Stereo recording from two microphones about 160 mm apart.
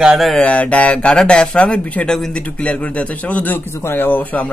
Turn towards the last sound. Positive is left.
turn(degrees=10)  # may be behind; listen again after turning